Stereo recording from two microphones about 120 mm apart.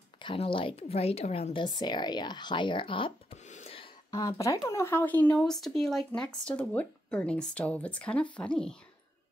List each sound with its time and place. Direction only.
0.2 s speech: 45° left (ahead or behind)
3.4 s gasp: 80° left
4.1 s speech: 30° left (ahead or behind); by 5.4 s 15° left (ahead or behind)
5.4 s speech: centre (ahead or behind)